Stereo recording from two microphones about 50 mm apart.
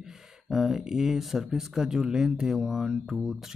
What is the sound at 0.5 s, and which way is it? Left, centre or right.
Speech, centre.